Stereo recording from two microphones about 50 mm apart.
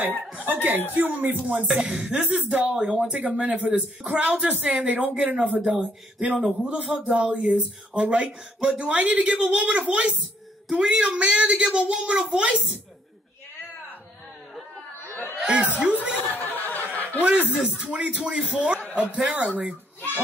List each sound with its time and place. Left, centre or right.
0.5 s speech: right
3.7 s speech: right
6.8 s a man's voice: centre
7.2 s speech: right
15.4 s speech: right
16.2 s snicker: left
17.2 s speech: right
17.6 s a man's voice: centre
17.8 s speech: right